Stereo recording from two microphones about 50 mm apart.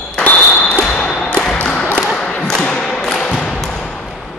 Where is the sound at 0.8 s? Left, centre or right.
Centre.